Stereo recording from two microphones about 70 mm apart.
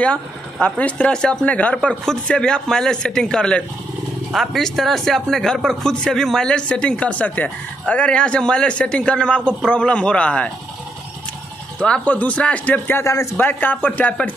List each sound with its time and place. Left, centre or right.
0.0 s speech: centre
4.3 s speech: centre
11.8 s speech: centre
13.0 s a man's voice: left
13.4 s speech: left